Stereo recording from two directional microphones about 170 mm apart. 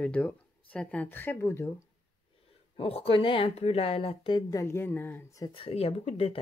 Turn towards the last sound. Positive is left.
turn(degrees=35)  # may be behind; listen again after turning